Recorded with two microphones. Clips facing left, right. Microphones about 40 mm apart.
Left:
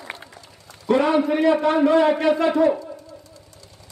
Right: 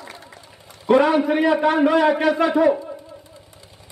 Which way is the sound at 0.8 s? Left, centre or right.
Centre.